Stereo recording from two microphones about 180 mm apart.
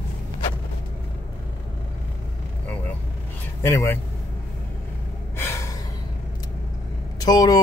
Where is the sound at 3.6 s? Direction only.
15° left (ahead or behind).